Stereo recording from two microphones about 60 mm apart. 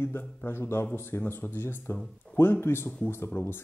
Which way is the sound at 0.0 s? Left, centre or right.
Left.